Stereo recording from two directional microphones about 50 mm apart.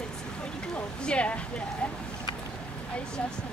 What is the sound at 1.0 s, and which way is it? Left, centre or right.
Speech, left.